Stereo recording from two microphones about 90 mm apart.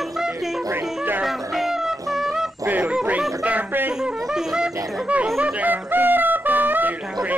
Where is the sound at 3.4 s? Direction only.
20° right (ahead or behind).